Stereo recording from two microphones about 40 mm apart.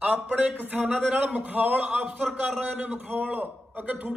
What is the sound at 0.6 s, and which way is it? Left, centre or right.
Speech, right.